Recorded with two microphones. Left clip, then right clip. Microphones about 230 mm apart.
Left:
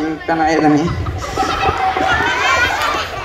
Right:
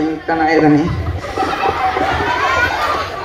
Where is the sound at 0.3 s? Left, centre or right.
Left.